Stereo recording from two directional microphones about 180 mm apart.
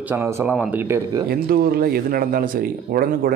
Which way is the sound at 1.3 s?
60° right (ahead or behind).